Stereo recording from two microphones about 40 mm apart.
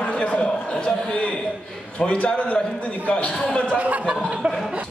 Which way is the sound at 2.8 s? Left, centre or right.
Left.